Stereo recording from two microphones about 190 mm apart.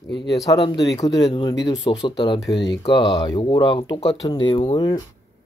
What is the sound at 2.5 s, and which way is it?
Speech, 65° left (ahead or behind).